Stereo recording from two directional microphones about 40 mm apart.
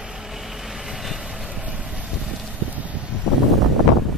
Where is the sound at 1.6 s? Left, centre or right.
Right.